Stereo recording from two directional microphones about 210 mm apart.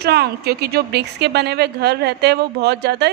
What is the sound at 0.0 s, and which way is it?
A woman's voice, 50° right (ahead or behind).